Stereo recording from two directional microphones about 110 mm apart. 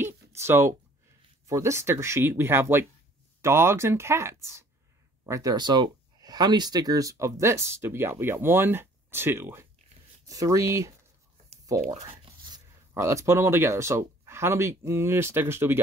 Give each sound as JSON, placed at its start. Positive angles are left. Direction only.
{"t": 0.0, "sound": "a sound", "side_deg": -25}
{"t": 1.5, "sound": "speech", "side_deg": -25}
{"t": 12.9, "sound": "speech", "side_deg": -25}